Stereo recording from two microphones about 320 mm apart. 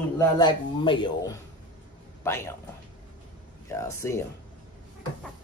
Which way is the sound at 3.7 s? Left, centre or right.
Centre.